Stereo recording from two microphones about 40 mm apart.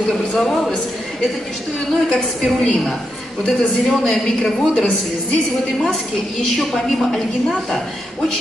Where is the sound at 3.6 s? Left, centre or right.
Centre.